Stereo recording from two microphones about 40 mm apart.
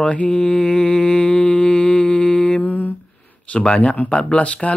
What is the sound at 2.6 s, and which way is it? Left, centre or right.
Humming, left.